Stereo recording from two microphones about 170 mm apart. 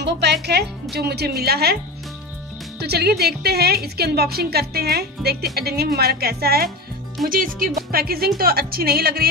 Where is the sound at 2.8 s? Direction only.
70° right (ahead or behind).